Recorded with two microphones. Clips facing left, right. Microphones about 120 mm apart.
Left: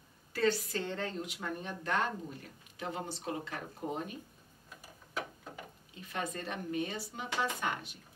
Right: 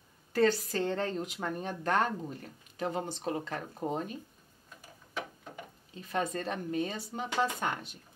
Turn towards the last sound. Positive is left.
turn(degrees=-40)  # may be behind; listen again after turning